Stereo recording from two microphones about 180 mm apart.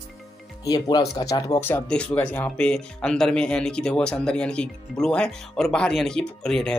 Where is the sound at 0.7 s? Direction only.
20° left (ahead or behind).